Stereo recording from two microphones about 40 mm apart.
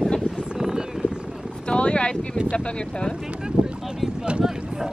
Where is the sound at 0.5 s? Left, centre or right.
Centre.